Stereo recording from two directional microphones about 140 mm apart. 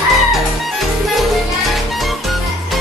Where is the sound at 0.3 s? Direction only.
Centre (ahead or behind).